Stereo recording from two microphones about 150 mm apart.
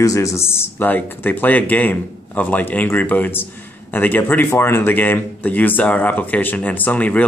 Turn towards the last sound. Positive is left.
turn(degrees=10)  # may be behind; listen again after turning